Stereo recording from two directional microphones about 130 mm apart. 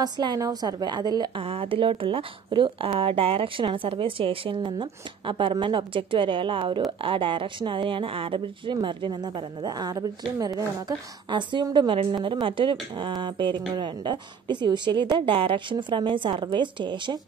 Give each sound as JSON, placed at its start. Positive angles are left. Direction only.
{"t": 0.0, "sound": "a woman's voice", "side_deg": -30}